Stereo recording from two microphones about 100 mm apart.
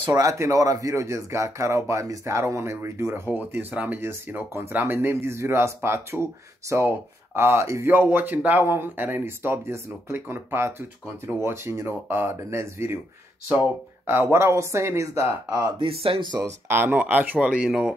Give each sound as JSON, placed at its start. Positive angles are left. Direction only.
{"t": 0.0, "sound": "speech", "side_deg": -35}
{"t": 14.0, "sound": "speech", "side_deg": -25}
{"t": 15.8, "sound": "speech", "side_deg": -70}
{"t": 16.3, "sound": "speech", "side_deg": -30}